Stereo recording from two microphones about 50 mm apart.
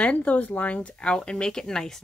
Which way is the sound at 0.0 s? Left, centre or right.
Left.